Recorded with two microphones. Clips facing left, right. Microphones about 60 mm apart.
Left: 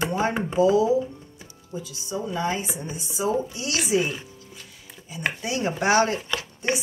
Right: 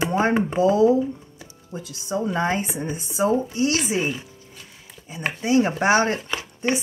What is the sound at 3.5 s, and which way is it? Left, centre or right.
Speech, right.